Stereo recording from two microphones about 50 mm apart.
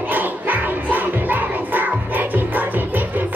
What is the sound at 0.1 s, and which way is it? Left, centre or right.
Music, right.